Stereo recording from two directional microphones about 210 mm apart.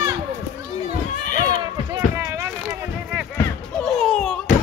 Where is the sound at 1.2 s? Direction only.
40° left (ahead or behind).